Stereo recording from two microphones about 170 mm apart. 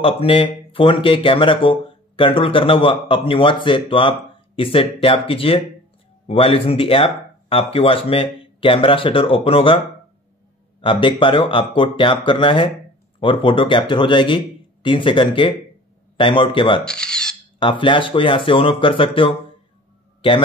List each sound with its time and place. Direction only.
0.0 s speech: 35° left (ahead or behind)
10.8 s speech: 30° left (ahead or behind)
16.8 s speech: 5° left (ahead or behind)
17.6 s speech: 30° left (ahead or behind)
20.2 s a sound: 30° left (ahead or behind)